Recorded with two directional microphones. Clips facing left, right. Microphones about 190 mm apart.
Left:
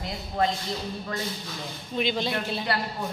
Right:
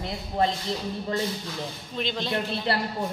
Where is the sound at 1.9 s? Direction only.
10° left (ahead or behind).